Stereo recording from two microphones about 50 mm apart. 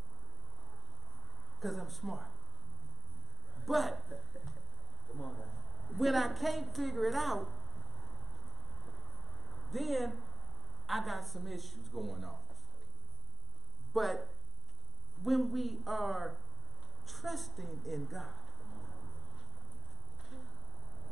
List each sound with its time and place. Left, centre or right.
1.6 s a woman's voice: centre
3.6 s speech: centre
5.1 s speech: centre
5.9 s a woman's voice: centre
7.9 s vehicle: centre
9.0 s a sound: centre
10.9 s a woman's voice: centre
13.9 s a woman's voice: centre
18.8 s a sound: centre